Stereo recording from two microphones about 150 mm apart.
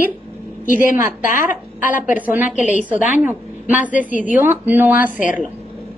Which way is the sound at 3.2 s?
10° right (ahead or behind).